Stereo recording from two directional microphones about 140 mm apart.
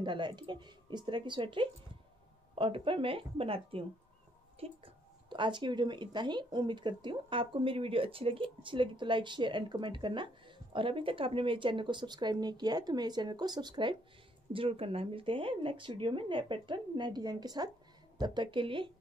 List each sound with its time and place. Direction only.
0.0 s a woman's voice: 35° right (ahead or behind)